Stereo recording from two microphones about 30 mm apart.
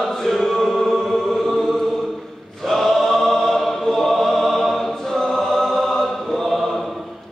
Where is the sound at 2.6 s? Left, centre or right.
Centre.